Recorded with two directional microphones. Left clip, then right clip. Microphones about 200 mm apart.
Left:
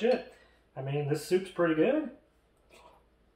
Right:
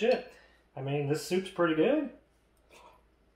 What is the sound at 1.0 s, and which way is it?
Speech, 25° right (ahead or behind).